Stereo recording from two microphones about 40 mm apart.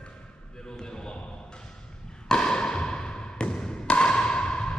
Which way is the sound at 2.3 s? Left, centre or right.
Centre.